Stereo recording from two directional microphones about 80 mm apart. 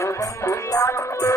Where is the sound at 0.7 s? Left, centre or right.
Left.